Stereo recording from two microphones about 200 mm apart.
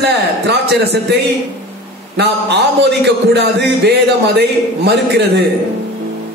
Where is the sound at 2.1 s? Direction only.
55° right (ahead or behind).